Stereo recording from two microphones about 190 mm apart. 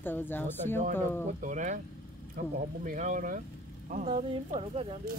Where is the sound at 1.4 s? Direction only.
40° right (ahead or behind).